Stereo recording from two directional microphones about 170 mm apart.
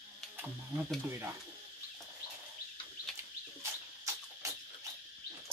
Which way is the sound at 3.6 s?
15° right (ahead or behind).